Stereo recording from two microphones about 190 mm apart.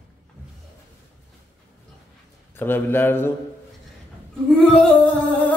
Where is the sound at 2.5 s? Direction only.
10° left (ahead or behind).